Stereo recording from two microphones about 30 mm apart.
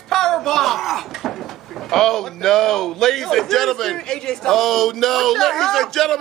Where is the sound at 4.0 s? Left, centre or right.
Left.